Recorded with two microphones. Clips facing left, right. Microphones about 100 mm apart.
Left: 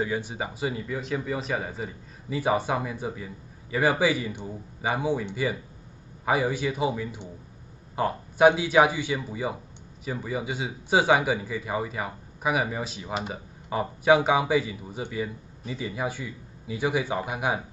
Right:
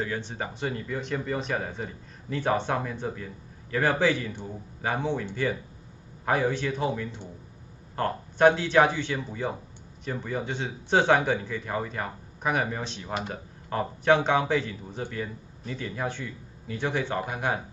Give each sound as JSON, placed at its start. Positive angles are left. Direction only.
{"t": 0.0, "sound": "speech", "side_deg": 10}